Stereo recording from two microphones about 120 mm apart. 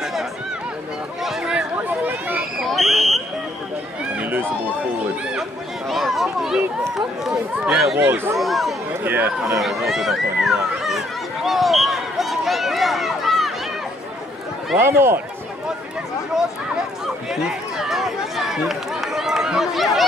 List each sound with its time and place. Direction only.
1.2 s chatter: 5° right (ahead or behind)
2.6 s fire alarm: centre (ahead or behind)
4.2 s run: 15° right (ahead or behind)
5.9 s a sound: centre (ahead or behind)
7.2 s speech: 5° right (ahead or behind)
8.0 s speech: 20° right (ahead or behind)
8.4 s speech: centre (ahead or behind)
9.0 s speech: 15° right (ahead or behind)
9.6 s a sound: centre (ahead or behind)
14.8 s speech: 20° right (ahead or behind)
17.4 s speech: 5° right (ahead or behind)